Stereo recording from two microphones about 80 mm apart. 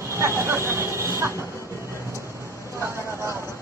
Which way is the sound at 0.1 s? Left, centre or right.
Right.